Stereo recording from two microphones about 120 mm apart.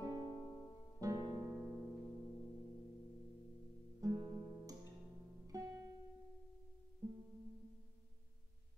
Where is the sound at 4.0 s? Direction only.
30° right (ahead or behind).